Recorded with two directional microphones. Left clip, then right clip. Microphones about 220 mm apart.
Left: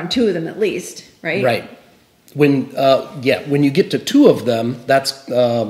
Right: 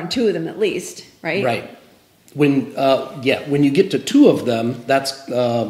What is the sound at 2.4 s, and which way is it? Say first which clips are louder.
Speech: left 2 dB; 40° left (ahead or behind).